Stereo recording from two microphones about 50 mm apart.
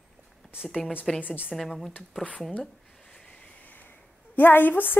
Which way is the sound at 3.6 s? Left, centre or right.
Left.